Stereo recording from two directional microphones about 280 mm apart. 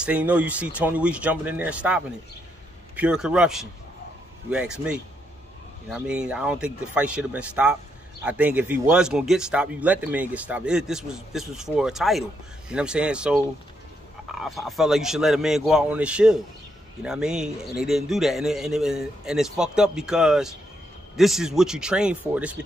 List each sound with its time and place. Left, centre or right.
0.0 s speech: centre
5.9 s speech: centre